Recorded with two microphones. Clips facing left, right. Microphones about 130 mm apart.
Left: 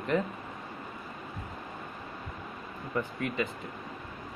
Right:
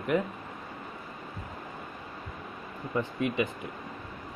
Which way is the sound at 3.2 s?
20° right (ahead or behind).